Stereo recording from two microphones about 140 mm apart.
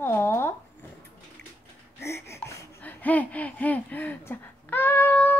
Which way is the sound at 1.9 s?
20° left (ahead or behind).